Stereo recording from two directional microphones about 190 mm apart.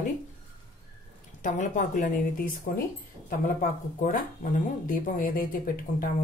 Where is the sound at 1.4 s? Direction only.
40° left (ahead or behind).